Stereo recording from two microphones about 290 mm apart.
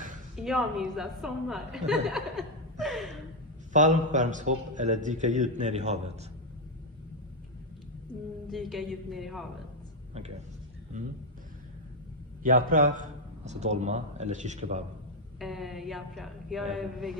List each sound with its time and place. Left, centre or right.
0.4 s a woman's voice: centre
3.7 s a man's voice: right
8.5 s a woman's voice: centre
12.4 s a man's voice: right
15.3 s a woman's voice: centre